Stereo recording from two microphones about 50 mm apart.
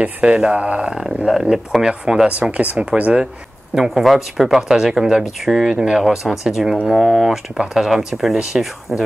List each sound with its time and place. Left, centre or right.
0.0 s speech: right
1.0 s speech: centre
2.5 s speech: right
3.7 s speech: centre